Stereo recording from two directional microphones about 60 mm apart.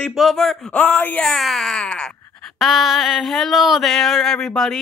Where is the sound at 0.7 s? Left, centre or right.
Left.